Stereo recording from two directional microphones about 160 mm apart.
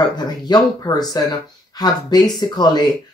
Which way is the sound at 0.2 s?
25° left (ahead or behind).